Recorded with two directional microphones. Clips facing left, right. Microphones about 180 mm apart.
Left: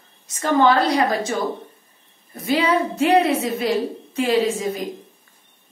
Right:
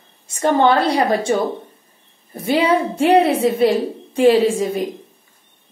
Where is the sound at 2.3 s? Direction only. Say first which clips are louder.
Right 3 dB; 30° right (ahead or behind).